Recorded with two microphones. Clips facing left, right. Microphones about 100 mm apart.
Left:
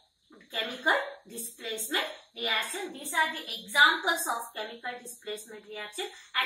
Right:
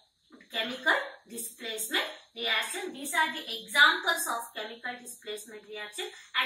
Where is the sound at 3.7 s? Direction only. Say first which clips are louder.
Even; 30° left (ahead or behind).